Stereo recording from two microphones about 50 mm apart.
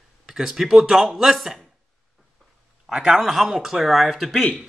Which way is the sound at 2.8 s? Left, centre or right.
Centre.